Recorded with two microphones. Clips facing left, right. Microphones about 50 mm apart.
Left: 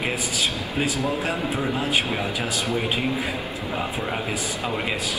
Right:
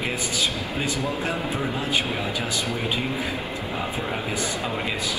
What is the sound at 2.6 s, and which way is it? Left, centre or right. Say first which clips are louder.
Speech: left 2 dB; left.